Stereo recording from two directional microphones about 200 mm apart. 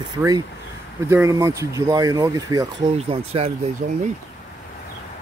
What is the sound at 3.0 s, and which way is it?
Speech, 30° right (ahead or behind).